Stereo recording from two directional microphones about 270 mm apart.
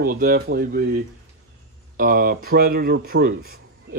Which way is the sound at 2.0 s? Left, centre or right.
Right.